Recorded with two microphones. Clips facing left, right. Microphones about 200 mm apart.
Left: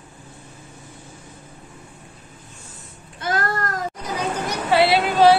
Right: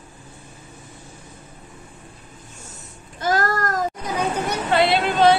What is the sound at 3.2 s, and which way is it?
Child singing, 40° right (ahead or behind).